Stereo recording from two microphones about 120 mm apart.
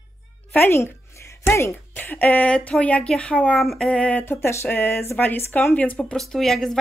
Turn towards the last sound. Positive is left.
turn(degrees=5)  # may be behind; listen again after turning